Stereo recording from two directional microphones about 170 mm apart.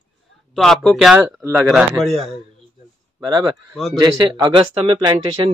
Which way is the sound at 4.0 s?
30° right (ahead or behind).